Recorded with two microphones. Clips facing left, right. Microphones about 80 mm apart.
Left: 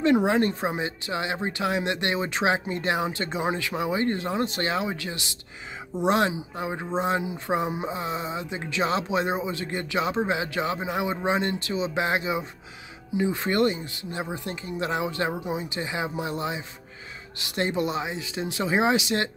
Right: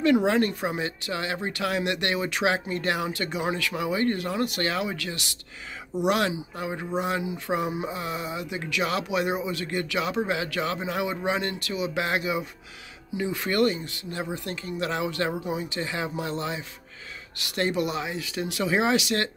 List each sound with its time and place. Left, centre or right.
0.0 s speech: left